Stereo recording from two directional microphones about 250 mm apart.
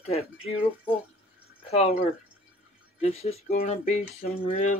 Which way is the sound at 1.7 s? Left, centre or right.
Left.